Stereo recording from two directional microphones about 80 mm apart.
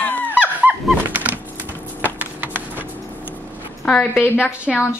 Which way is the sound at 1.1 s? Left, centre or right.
Right.